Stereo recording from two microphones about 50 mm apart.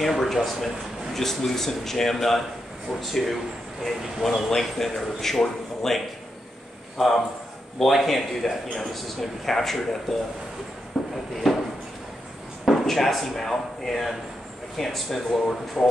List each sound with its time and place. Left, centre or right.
0.0 s a man's voice: centre
10.9 s a sound: centre
12.6 s a man's voice: centre